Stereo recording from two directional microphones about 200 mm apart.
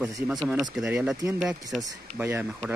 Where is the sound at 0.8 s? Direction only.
5° right (ahead or behind).